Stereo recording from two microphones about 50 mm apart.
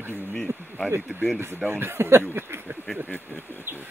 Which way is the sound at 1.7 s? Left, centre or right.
Right.